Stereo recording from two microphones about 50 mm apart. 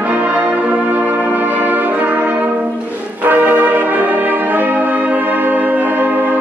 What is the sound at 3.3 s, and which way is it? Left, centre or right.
Brass instrument, right.